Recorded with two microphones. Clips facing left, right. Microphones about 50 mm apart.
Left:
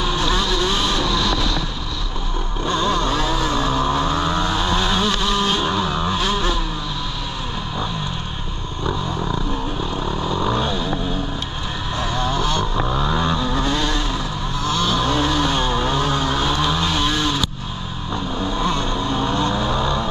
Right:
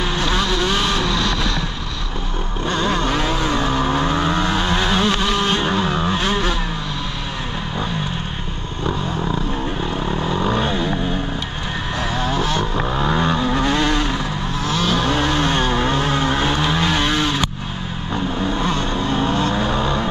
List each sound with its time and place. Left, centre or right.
0.3 s vehicle: right
1.1 s a sound: right
2.6 s vehicle: right
3.1 s vehicle: right
3.3 s vehicle: right
10.1 s vehicle: right
12.2 s vehicle: right